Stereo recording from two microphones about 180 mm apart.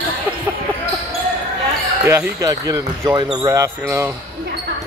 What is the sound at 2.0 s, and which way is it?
Speech, 15° right (ahead or behind).